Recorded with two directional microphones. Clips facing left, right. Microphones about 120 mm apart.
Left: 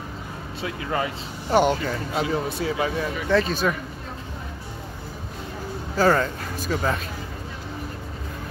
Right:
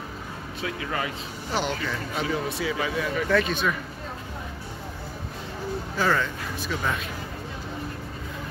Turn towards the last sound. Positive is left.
turn(degrees=35)  # may be behind; listen again after turning